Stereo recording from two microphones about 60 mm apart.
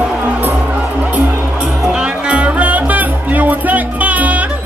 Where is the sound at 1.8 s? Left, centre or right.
Centre.